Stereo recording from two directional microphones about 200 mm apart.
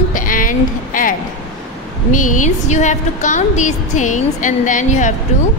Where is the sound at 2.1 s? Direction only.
40° left (ahead or behind).